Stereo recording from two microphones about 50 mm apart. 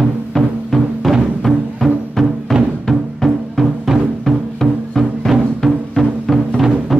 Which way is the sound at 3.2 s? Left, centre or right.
Centre.